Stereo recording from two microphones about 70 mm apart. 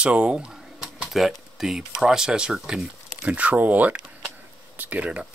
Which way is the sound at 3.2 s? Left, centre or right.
Centre.